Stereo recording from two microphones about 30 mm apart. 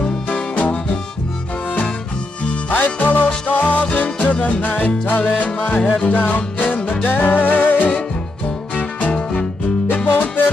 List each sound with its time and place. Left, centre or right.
0.3 s music: left
2.7 s music: left
5.8 s music: left
6.1 s music: left
7.1 s music: left
9.1 s music: left
10.1 s music: left